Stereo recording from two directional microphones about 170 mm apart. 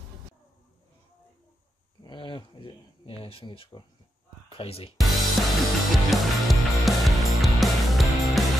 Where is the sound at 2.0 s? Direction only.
30° left (ahead or behind).